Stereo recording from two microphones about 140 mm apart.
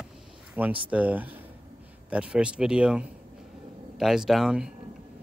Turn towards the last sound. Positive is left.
turn(degrees=-5)  # may be behind; listen again after turning